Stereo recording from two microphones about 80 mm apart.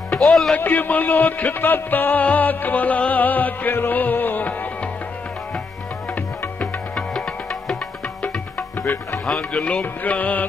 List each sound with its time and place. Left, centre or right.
0.1 s music: centre
0.6 s music: left
6.6 s music: centre
8.8 s music: left
9.5 s music: centre